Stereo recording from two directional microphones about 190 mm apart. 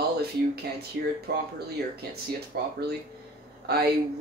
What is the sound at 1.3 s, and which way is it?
Speech, 60° right (ahead or behind).